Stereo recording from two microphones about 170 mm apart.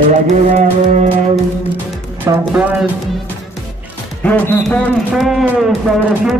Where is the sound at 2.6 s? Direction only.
5° right (ahead or behind).